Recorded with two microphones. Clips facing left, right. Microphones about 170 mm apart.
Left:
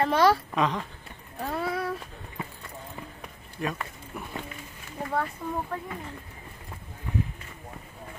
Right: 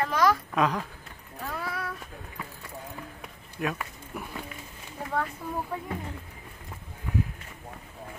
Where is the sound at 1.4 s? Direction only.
30° left (ahead or behind).